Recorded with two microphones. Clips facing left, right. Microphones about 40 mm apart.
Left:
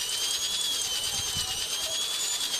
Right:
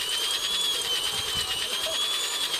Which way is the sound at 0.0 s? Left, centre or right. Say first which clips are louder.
Right 4 dB; right.